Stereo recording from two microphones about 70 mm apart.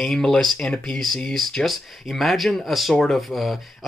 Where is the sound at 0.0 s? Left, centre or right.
Centre.